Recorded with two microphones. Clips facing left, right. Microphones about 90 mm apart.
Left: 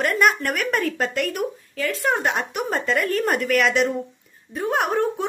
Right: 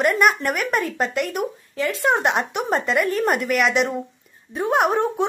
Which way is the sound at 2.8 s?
10° right (ahead or behind).